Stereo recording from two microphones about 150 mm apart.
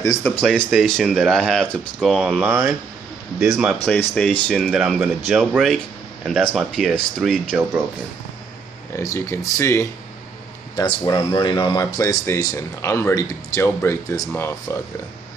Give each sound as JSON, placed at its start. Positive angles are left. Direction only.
{"t": 0.0, "sound": "speech", "side_deg": 20}
{"t": 0.4, "sound": "speech", "side_deg": 5}
{"t": 2.4, "sound": "speech", "side_deg": -15}
{"t": 3.9, "sound": "speech", "side_deg": 5}
{"t": 8.9, "sound": "speech", "side_deg": 20}
{"t": 10.8, "sound": "speech", "side_deg": 30}